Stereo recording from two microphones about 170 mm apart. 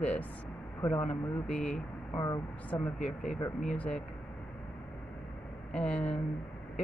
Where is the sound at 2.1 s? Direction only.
20° left (ahead or behind).